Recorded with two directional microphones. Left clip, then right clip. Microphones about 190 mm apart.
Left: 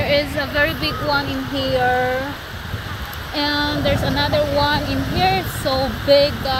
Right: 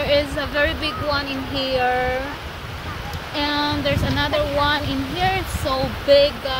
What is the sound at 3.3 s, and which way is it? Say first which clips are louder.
Speech: left 2 dB; 35° left (ahead or behind).